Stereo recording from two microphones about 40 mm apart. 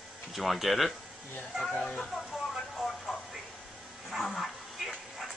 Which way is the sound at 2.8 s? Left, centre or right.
Centre.